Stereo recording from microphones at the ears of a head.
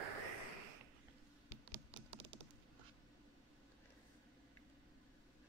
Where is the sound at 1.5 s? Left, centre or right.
Right.